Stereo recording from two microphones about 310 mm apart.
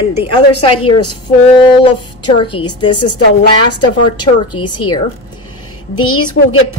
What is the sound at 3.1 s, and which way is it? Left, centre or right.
A woman's voice, left.